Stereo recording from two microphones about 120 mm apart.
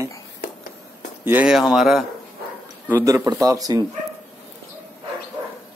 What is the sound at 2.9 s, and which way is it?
Speech, 20° right (ahead or behind).